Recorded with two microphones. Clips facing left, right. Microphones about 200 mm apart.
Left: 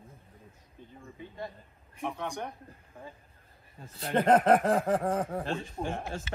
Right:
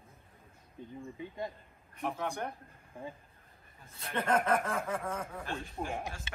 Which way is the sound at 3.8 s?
30° left (ahead or behind).